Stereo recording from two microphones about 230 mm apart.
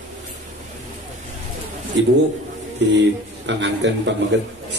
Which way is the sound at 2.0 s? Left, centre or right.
Right.